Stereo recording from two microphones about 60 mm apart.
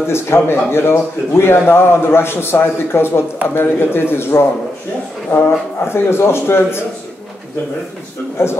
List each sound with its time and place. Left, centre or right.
0.0 s a man's voice: left